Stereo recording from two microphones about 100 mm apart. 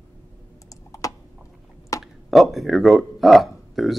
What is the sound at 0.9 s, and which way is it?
Typing, 35° left (ahead or behind).